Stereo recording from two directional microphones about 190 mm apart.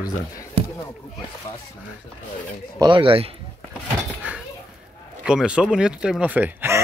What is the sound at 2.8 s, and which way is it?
Speech, 25° right (ahead or behind).